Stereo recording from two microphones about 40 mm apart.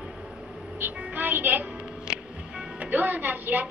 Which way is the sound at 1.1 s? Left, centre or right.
Right.